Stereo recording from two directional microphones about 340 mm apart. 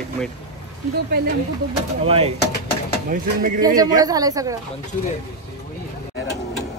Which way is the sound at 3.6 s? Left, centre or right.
Centre.